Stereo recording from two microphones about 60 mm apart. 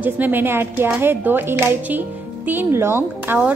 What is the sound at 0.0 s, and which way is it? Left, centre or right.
A woman's voice, right.